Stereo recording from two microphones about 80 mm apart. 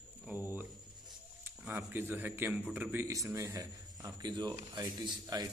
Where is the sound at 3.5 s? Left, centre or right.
Right.